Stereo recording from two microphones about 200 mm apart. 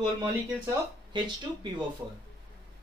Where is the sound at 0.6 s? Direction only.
20° right (ahead or behind).